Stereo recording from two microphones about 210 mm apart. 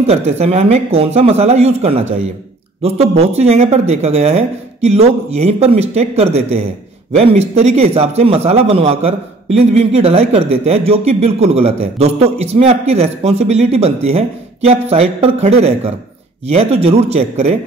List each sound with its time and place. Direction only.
0.0 s speech: 30° right (ahead or behind)